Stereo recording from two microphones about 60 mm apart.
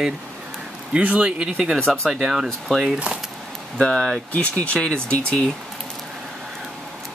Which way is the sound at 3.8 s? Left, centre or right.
Centre.